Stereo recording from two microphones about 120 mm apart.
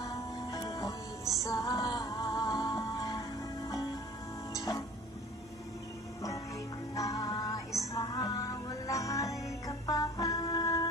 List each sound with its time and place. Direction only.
0.0 s music: 30° left (ahead or behind)
7.0 s music: 30° left (ahead or behind)